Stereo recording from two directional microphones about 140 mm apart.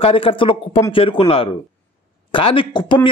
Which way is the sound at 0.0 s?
40° left (ahead or behind).